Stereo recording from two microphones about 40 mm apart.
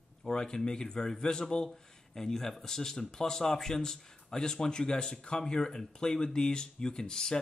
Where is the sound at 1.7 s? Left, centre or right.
Centre.